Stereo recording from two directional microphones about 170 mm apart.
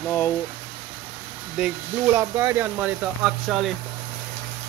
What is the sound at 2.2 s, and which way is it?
Speech, 15° right (ahead or behind).